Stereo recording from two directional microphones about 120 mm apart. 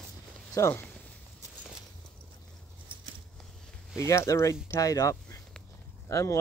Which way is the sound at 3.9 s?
25° left (ahead or behind).